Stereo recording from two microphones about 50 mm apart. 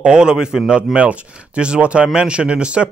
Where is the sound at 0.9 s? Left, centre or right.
Right.